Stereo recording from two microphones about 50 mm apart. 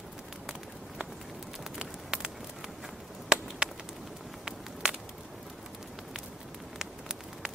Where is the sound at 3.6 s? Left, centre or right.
Centre.